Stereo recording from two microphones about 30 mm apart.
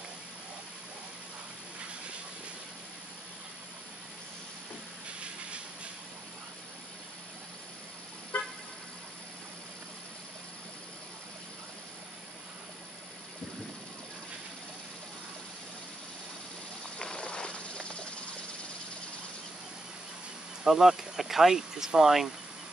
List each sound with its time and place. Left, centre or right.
8.3 s car: left
17.0 s a sound: left
20.6 s speech: centre